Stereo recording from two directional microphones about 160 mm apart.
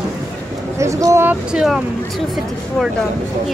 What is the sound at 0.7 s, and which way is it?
Speech, 20° right (ahead or behind).